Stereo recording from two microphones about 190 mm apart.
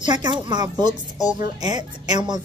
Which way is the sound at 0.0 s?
25° right (ahead or behind).